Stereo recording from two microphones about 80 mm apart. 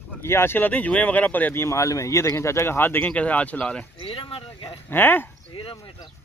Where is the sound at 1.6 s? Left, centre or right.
Left; by 3.9 s centre.